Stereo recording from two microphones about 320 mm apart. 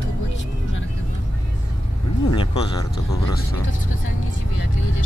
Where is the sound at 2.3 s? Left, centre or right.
Centre.